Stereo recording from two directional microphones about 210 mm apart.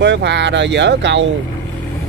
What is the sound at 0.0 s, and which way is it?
Speech, 55° right (ahead or behind).